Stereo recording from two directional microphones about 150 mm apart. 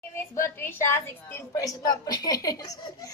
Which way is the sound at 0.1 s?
15° left (ahead or behind).